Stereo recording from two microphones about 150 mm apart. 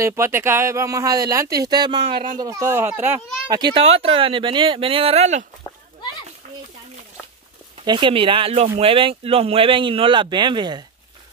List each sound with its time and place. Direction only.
0.0 s speech: 15° right (ahead or behind)
3.4 s speech: 30° right (ahead or behind)
3.8 s speech: 40° right (ahead or behind)
7.8 s speech: 30° right (ahead or behind)